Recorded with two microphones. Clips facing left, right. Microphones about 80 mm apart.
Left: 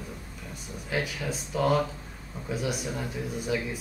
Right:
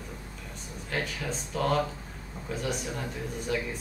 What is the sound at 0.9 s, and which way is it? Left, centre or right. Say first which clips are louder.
Speech: left 2 dB; centre.